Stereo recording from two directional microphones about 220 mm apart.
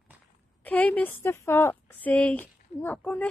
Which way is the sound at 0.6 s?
5° left (ahead or behind).